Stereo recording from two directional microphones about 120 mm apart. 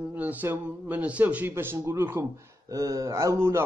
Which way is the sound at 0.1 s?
15° right (ahead or behind).